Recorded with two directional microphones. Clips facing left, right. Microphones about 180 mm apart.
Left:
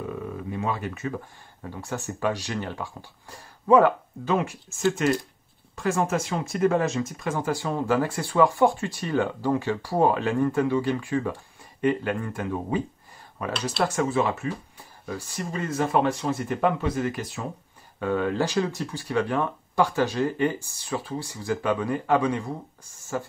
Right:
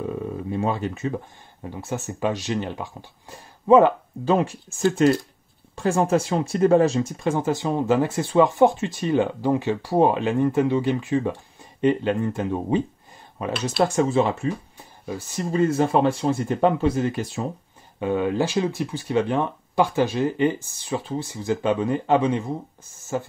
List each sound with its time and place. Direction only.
0.5 s speech: 30° right (ahead or behind)